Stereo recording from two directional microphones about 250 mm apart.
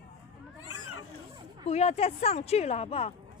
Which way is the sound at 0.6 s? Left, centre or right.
Left.